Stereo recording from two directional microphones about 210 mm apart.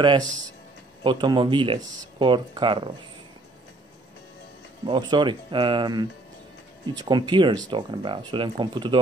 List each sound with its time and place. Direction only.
0.0 s speech: 20° right (ahead or behind)
4.8 s speech: 20° right (ahead or behind)